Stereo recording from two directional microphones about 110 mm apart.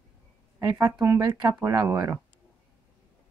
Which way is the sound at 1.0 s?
35° right (ahead or behind).